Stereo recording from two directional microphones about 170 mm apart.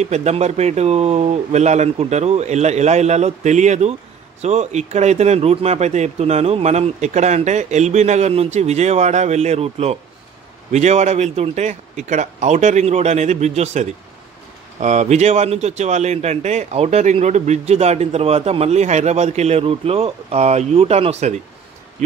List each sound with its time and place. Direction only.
0.0 s speech: 40° right (ahead or behind)